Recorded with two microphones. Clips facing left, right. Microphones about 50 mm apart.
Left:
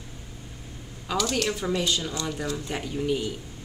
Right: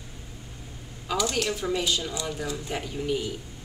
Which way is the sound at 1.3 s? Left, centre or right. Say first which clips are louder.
Left 1 dB; centre.